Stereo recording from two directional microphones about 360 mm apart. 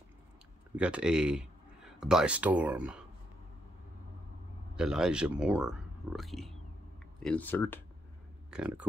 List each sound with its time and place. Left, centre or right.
0.7 s speech: centre
4.7 s speech: centre